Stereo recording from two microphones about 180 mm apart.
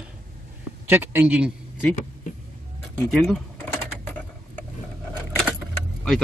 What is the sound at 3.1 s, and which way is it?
Speech, centre (ahead or behind).